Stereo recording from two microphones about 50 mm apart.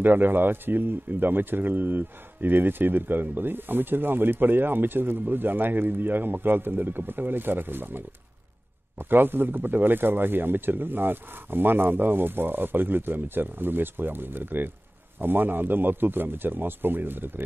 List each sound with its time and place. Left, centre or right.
0.0 s speech: right